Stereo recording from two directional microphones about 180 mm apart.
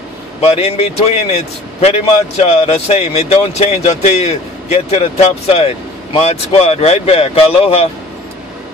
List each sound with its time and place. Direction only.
0.4 s a man's voice: 35° left (ahead or behind)